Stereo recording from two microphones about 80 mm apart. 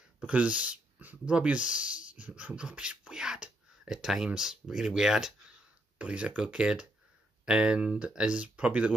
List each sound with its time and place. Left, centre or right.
0.2 s speech: centre